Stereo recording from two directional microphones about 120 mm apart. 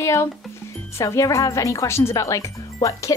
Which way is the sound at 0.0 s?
25° left (ahead or behind).